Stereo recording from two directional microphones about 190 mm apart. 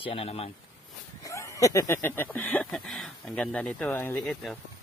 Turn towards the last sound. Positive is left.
turn(degrees=0)  # may be behind; listen again after turning